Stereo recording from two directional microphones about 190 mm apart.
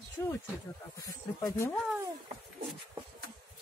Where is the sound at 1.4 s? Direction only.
15° left (ahead or behind).